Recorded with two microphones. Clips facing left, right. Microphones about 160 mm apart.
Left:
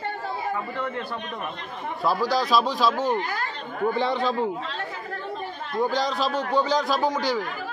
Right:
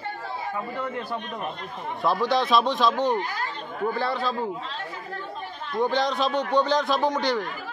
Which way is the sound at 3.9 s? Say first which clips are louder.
Left 3 dB; 20° left (ahead or behind).